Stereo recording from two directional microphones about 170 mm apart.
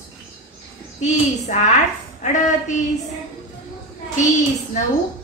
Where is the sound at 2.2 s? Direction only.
45° left (ahead or behind).